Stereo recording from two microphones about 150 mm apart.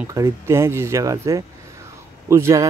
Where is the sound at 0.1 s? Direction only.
20° right (ahead or behind).